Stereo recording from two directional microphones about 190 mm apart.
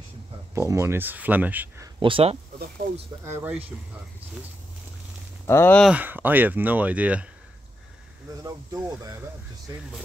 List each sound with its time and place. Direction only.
0.6 s speech: 15° right (ahead or behind)
2.0 s speech: 30° right (ahead or behind)
3.3 s speech: 10° right (ahead or behind)
5.5 s speech: 15° left (ahead or behind)
5.8 s speech: 5° right (ahead or behind)
8.4 s speech: 20° right (ahead or behind)